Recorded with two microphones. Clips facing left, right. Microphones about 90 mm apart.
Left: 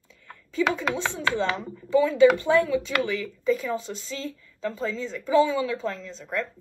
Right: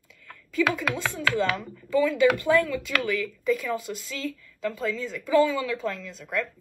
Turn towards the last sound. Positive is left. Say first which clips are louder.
# even
turn(degrees=30)  # may be behind; listen again after turning